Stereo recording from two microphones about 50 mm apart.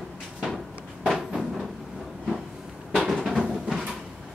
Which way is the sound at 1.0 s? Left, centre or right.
Centre.